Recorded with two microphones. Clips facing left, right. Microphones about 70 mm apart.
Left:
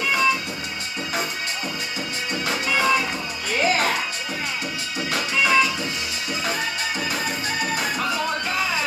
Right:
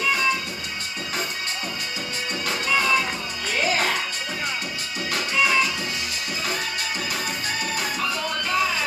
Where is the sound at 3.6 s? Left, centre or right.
Left.